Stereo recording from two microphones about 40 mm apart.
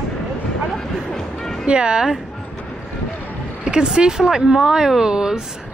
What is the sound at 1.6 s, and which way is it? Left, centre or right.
Speech, right.